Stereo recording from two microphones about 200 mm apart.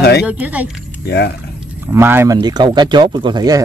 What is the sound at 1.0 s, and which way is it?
Speech, 55° left (ahead or behind).